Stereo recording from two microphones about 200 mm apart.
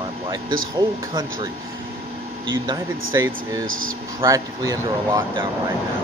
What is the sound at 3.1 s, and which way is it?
Speech, 15° right (ahead or behind).